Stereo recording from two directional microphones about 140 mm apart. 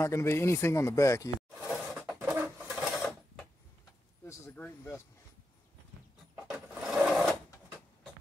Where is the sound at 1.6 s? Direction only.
5° right (ahead or behind).